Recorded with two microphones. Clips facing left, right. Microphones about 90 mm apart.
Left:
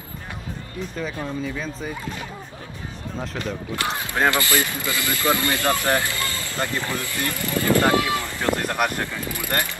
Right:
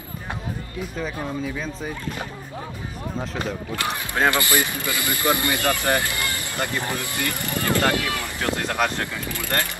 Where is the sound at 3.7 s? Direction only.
25° left (ahead or behind).